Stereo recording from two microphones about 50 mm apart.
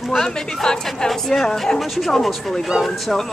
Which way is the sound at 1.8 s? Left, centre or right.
Centre.